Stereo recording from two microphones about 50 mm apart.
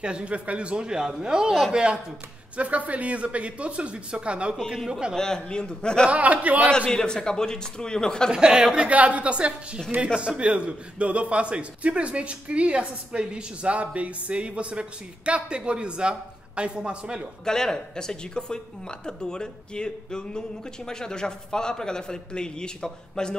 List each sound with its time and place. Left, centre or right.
0.0 s a man's voice: right
4.6 s speech: centre
5.1 s speech: centre
6.0 s a man's voice: right
6.9 s speech: centre
8.3 s speech: centre
8.7 s a man's voice: right
17.5 s speech: centre